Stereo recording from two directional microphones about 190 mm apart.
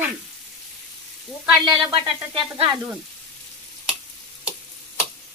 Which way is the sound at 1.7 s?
25° right (ahead or behind).